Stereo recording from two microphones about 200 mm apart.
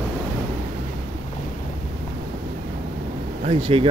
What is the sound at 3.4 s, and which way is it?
Speech, 30° right (ahead or behind).